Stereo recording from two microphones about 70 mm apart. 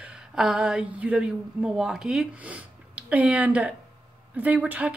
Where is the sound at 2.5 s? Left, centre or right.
Centre.